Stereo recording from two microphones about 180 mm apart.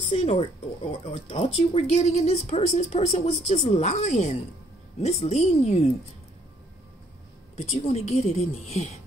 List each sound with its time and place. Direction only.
0.1 s speech: 35° left (ahead or behind)
7.5 s speech: 35° left (ahead or behind)